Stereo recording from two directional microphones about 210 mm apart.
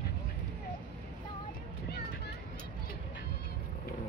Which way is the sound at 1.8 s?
50° left (ahead or behind).